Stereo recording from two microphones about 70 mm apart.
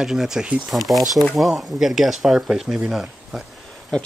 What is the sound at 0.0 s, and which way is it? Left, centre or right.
Speech, centre.